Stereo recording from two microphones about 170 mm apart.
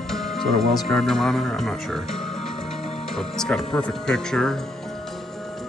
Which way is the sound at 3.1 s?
5° left (ahead or behind).